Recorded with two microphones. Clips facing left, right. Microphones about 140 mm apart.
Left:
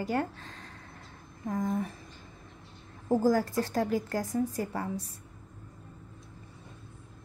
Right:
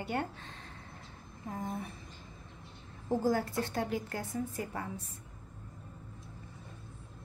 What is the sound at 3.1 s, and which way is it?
A woman's voice, 40° left (ahead or behind).